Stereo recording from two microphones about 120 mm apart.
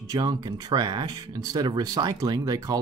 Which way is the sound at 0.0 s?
30° right (ahead or behind).